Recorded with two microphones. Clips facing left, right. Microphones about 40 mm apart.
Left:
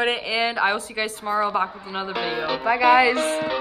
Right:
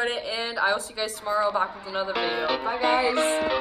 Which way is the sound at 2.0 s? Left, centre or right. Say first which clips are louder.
Even; centre.